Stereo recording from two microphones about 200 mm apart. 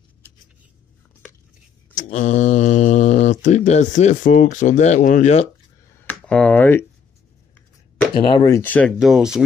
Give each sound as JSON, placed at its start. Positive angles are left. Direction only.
{"t": 2.0, "sound": "speech", "side_deg": 35}
{"t": 6.0, "sound": "speech", "side_deg": 5}
{"t": 8.1, "sound": "speech", "side_deg": 25}
{"t": 8.9, "sound": "speech", "side_deg": 0}